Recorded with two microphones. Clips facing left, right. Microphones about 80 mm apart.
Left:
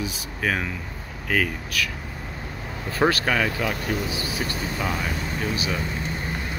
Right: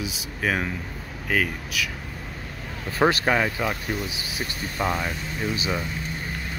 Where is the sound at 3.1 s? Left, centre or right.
Centre.